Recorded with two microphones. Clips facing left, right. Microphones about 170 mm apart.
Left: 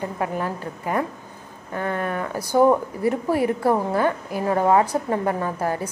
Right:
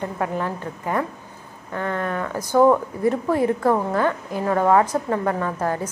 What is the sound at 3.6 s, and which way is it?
Speech, 30° left (ahead or behind).